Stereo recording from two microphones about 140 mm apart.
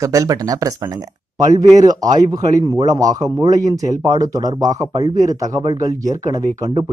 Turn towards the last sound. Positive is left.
turn(degrees=-25)  # may be behind; listen again after turning